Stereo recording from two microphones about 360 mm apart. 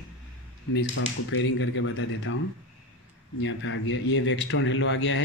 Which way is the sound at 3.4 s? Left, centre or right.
Left.